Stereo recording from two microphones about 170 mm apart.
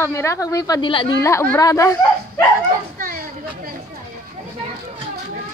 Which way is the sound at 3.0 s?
60° right (ahead or behind).